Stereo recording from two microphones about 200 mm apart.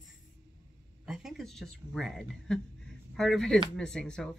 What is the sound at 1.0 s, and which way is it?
Speech, centre (ahead or behind).